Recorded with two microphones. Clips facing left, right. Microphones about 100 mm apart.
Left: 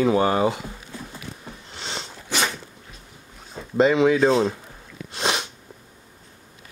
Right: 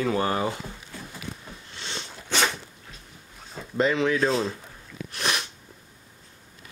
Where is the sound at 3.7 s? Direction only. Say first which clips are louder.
Left 6 dB; 20° left (ahead or behind).